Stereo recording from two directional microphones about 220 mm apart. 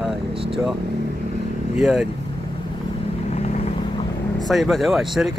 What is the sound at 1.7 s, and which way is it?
Speech, centre (ahead or behind).